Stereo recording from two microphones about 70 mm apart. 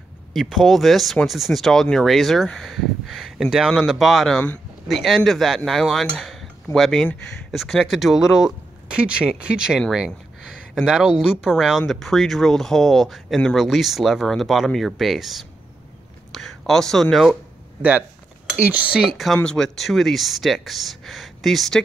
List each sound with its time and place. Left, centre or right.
0.3 s speech: centre
18.6 s speech: right
19.4 s speech: centre